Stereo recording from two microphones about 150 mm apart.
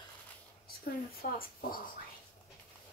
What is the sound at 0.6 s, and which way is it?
A woman's voice, 85° left.